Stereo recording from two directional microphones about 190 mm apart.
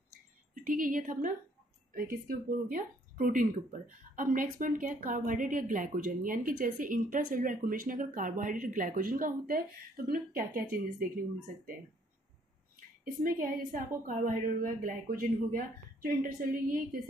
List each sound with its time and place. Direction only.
0.6 s speech: 45° right (ahead or behind)
13.0 s speech: 45° right (ahead or behind)